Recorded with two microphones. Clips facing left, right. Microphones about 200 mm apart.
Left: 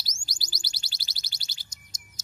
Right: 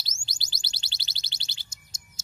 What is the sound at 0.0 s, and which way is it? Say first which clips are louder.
Music: left 1 dB; 25° right (ahead or behind).